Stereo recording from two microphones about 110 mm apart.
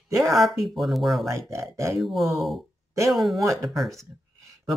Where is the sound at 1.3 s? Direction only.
25° right (ahead or behind).